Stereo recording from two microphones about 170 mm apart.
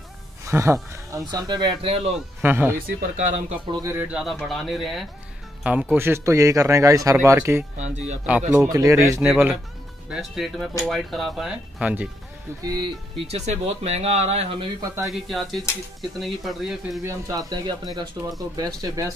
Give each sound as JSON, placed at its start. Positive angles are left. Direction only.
{"t": 0.5, "sound": "speech", "side_deg": -15}
{"t": 2.1, "sound": "speech", "side_deg": -10}
{"t": 3.2, "sound": "speech", "side_deg": -45}
{"t": 3.8, "sound": "speech", "side_deg": -10}
{"t": 7.7, "sound": "speech", "side_deg": -40}
{"t": 8.7, "sound": "speech", "side_deg": -20}
{"t": 12.6, "sound": "speech", "side_deg": -25}
{"t": 15.0, "sound": "speech", "side_deg": 0}
{"t": 17.0, "sound": "speech", "side_deg": -20}